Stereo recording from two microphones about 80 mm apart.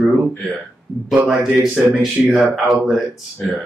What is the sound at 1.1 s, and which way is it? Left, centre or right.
Speech, centre.